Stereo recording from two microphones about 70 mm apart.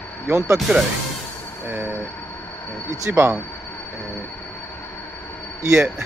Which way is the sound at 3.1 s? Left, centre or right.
Right.